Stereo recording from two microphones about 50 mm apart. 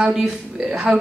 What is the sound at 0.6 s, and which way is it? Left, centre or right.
Speech, right.